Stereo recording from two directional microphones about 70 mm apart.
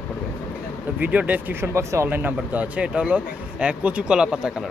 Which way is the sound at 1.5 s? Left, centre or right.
Right.